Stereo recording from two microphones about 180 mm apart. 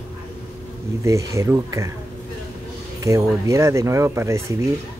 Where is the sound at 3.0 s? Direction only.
15° right (ahead or behind).